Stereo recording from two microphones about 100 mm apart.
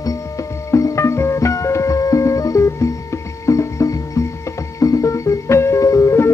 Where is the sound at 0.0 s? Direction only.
35° left (ahead or behind).